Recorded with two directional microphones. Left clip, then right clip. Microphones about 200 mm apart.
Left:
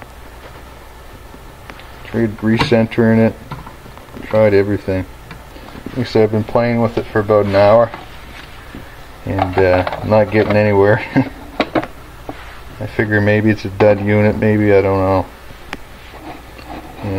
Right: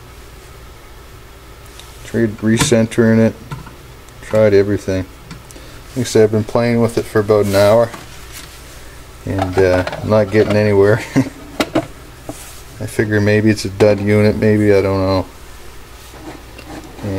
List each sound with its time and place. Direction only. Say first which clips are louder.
2.1 s speech: even; 10° right (ahead or behind)
6.1 s speech: right 1 dB; 15° right (ahead or behind)
9.3 s speech: left 1 dB; 15° right (ahead or behind)
12.9 s speech: even; 15° right (ahead or behind)